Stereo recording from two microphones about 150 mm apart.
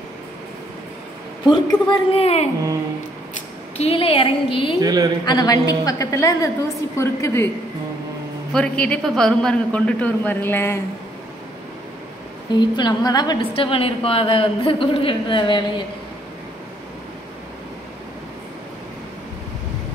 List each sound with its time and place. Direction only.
1.5 s a woman's voice: 30° left (ahead or behind)
2.1 s music: 45° left (ahead or behind)
3.7 s a woman's voice: 40° left (ahead or behind)
4.7 s a woman's voice: 25° right (ahead or behind)
5.2 s a woman's voice: 25° left (ahead or behind)
8.5 s a man's voice: 5° left (ahead or behind)
12.5 s a woman's voice: 30° left (ahead or behind)
13.5 s a woman's voice: 40° left (ahead or behind)